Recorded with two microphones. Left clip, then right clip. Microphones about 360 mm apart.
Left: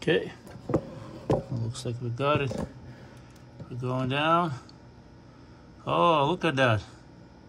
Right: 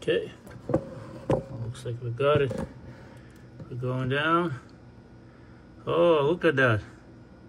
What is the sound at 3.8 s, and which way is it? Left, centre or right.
Speech, centre.